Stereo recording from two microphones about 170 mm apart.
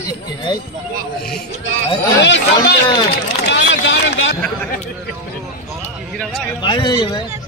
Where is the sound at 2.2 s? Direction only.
90° left.